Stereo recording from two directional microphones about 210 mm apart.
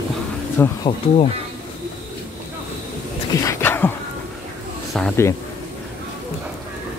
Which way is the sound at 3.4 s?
10° left (ahead or behind).